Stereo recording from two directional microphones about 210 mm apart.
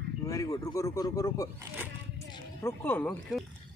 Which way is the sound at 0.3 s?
15° left (ahead or behind).